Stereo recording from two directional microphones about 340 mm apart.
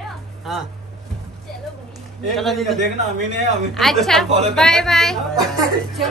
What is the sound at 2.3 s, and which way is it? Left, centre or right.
Speech, centre.